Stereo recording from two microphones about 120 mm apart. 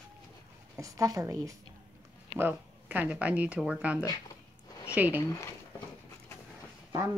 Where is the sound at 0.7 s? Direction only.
25° right (ahead or behind).